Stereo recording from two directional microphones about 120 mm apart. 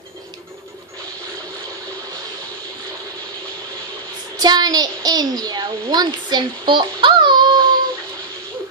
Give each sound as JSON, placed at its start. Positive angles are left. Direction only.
{"t": 4.4, "sound": "a child's voice", "side_deg": -35}